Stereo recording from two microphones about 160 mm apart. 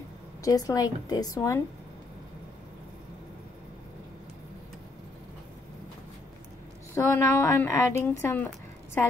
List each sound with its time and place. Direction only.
0.4 s a woman's voice: 20° left (ahead or behind)
7.0 s a woman's voice: 20° left (ahead or behind)